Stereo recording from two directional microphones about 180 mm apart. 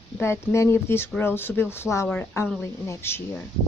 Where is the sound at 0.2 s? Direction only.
15° left (ahead or behind).